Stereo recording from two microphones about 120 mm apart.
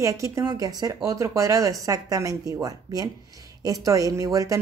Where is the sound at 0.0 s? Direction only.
25° right (ahead or behind).